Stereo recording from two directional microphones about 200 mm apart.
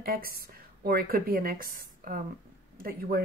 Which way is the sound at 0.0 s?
45° right (ahead or behind).